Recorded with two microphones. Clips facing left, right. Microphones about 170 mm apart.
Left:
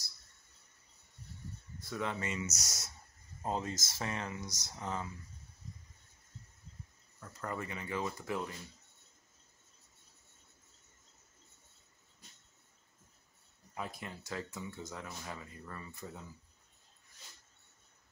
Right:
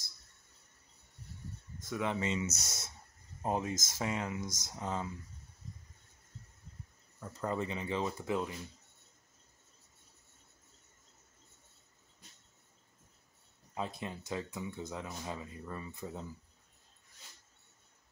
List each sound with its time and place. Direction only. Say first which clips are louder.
1.9 s speech: right 3 dB; 20° right (ahead or behind)
2.5 s speech: right 2 dB; 55° right (ahead or behind)
3.4 s speech: right 3 dB; 15° right (ahead or behind)
7.4 s speech: right 5 dB; 20° right (ahead or behind)
13.7 s speech: right 4 dB; 20° right (ahead or behind)